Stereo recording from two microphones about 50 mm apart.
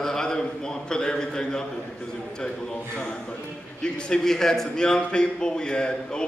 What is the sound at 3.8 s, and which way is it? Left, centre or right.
A man's voice, centre.